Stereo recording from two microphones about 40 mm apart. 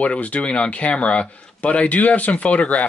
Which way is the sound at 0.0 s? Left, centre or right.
Left.